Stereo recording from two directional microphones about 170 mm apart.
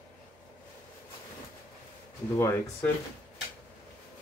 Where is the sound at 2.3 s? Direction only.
15° left (ahead or behind).